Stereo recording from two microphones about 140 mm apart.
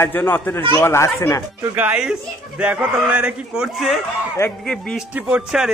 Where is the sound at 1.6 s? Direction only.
10° right (ahead or behind); by 5.0 s 5° left (ahead or behind).